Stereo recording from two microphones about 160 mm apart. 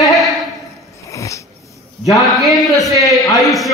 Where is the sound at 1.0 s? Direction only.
20° left (ahead or behind).